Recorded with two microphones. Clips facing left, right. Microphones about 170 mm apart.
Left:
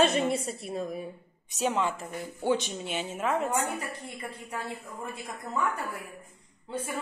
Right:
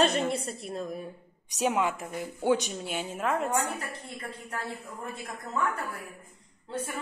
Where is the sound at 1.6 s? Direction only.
15° right (ahead or behind); by 5.1 s 5° left (ahead or behind).